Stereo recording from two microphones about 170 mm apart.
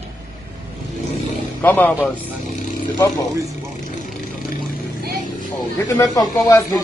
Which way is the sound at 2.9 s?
20° left (ahead or behind).